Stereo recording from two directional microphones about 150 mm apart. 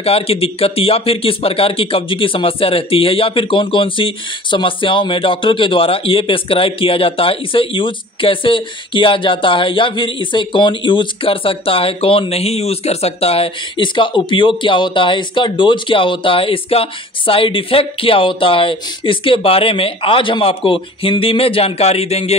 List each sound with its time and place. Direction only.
0.0 s speech: 40° left (ahead or behind)